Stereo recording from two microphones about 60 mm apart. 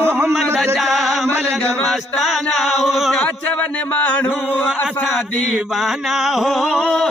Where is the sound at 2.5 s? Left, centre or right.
Centre.